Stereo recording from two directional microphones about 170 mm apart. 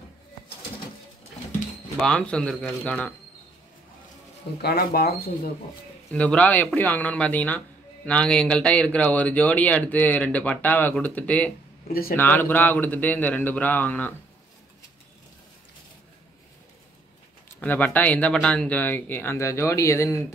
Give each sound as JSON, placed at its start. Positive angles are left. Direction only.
{"t": 2.0, "sound": "speech", "side_deg": 5}
{"t": 4.6, "sound": "speech", "side_deg": 65}
{"t": 6.1, "sound": "speech", "side_deg": 10}
{"t": 11.9, "sound": "speech", "side_deg": 60}
{"t": 12.2, "sound": "speech", "side_deg": 10}
{"t": 17.6, "sound": "speech", "side_deg": 10}